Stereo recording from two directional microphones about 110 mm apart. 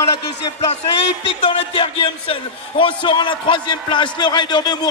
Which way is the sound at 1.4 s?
55° left (ahead or behind).